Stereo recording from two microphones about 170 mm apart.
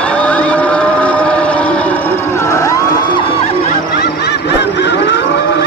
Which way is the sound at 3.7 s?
65° left (ahead or behind).